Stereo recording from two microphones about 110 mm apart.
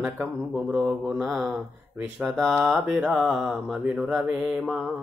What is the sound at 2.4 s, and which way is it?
Speech, 20° right (ahead or behind).